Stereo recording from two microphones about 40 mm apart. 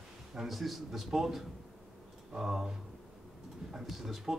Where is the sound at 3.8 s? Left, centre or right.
Centre.